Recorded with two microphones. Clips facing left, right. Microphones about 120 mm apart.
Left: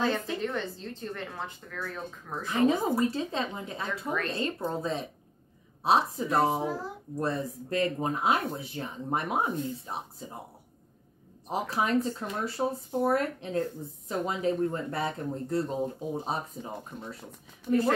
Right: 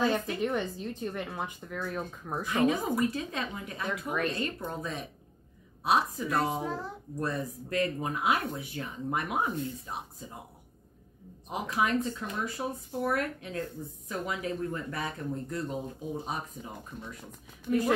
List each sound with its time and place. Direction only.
0.4 s speech: 15° right (ahead or behind)
2.5 s speech: 30° left (ahead or behind)
11.4 s speech: 35° left (ahead or behind)